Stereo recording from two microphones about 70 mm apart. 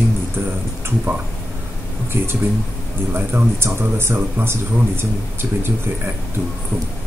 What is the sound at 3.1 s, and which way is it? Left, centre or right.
Speech, right.